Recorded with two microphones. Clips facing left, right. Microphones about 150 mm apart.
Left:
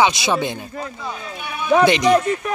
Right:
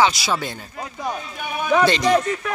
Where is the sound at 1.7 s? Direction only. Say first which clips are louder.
Left 3 dB; 15° left (ahead or behind).